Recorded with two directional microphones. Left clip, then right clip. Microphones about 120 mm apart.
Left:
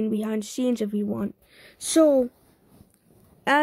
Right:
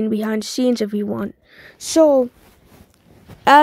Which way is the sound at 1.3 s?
15° right (ahead or behind).